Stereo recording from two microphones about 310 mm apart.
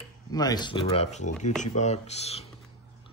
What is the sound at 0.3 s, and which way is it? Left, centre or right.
Speech, centre.